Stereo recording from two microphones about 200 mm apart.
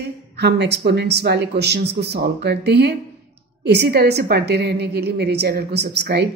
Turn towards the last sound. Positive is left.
turn(degrees=-55)  # may be behind; listen again after turning